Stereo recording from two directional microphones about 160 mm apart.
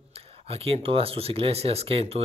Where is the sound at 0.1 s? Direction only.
35° right (ahead or behind).